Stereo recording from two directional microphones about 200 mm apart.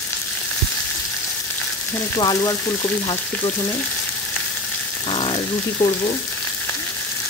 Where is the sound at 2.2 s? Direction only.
15° left (ahead or behind).